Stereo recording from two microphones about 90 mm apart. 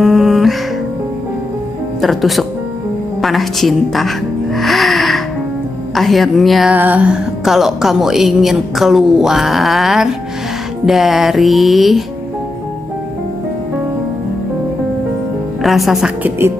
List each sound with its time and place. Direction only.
0.0 s music: 5° right (ahead or behind)
2.0 s a woman's voice: centre (ahead or behind)
4.6 s music: centre (ahead or behind)
5.9 s a woman's voice: centre (ahead or behind)
6.7 s music: 20° right (ahead or behind)
7.4 s a woman's voice: 5° right (ahead or behind)
15.6 s a woman's voice: centre (ahead or behind)
16.2 s a woman's voice: 25° right (ahead or behind)